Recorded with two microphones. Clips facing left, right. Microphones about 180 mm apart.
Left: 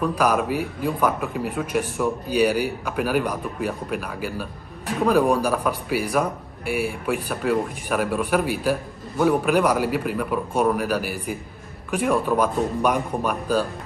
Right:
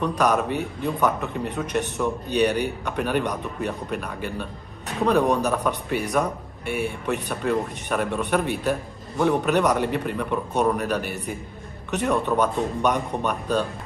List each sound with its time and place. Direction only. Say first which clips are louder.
0.0 s speech: left 1 dB; 5° left (ahead or behind)